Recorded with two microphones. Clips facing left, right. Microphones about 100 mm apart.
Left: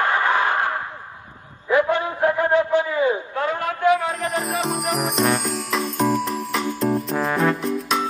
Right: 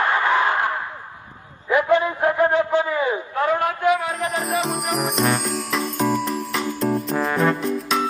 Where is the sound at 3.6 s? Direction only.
20° right (ahead or behind).